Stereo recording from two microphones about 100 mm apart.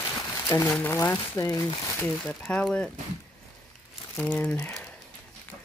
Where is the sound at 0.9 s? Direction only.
25° left (ahead or behind).